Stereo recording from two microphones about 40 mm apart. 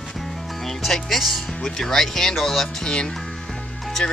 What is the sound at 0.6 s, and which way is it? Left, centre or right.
Speech, centre.